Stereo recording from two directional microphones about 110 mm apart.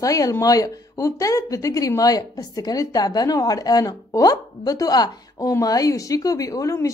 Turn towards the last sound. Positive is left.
turn(degrees=30)  # may be behind; listen again after turning